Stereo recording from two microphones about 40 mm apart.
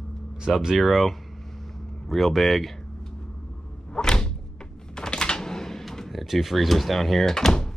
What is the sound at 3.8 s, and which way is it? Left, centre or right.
Door, centre.